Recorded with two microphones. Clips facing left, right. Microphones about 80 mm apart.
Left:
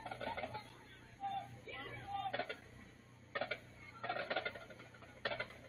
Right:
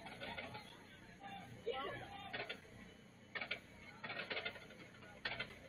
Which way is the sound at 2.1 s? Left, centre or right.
Left.